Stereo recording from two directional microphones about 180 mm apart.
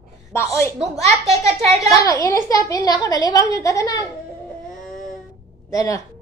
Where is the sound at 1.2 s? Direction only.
35° right (ahead or behind).